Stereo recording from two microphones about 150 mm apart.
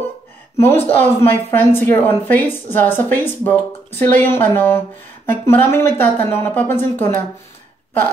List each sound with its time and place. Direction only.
0.6 s a woman's voice: 15° left (ahead or behind)